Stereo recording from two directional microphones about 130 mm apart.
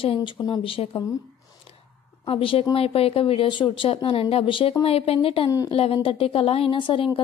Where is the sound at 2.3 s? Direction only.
45° left (ahead or behind).